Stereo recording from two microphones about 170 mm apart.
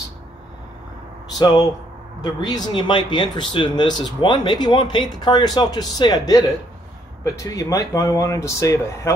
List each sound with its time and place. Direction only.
1.3 s speech: 20° left (ahead or behind)